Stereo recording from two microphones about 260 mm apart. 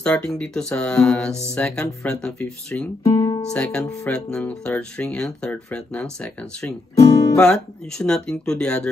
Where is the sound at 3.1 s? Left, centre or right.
Centre.